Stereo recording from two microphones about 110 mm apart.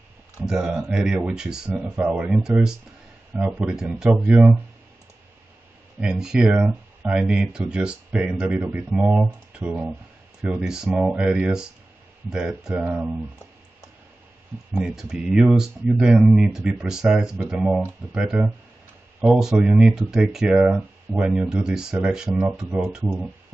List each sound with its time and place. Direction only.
0.4 s speech: 5° right (ahead or behind)
5.9 s speech: 5° right (ahead or behind)
14.7 s speech: 5° right (ahead or behind)